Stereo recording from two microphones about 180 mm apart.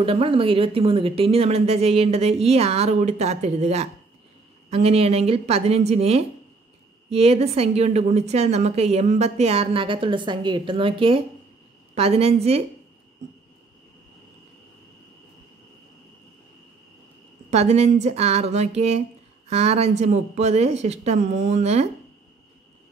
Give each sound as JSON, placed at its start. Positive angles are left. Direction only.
{"t": 0.0, "sound": "a woman's voice", "side_deg": -30}
{"t": 17.5, "sound": "a woman's voice", "side_deg": -35}